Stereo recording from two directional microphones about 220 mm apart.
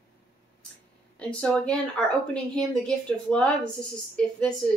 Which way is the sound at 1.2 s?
5° left (ahead or behind).